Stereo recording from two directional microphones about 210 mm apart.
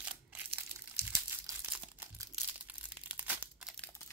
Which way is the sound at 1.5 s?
10° right (ahead or behind).